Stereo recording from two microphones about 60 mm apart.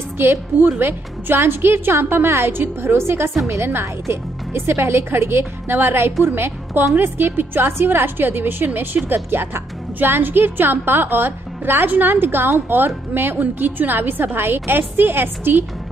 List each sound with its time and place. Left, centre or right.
0.2 s a woman's voice: right